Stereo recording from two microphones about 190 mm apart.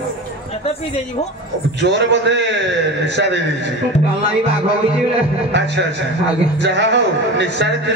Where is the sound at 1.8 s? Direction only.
65° right (ahead or behind).